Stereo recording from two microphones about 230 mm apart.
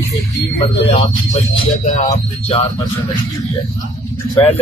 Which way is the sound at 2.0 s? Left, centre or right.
Left.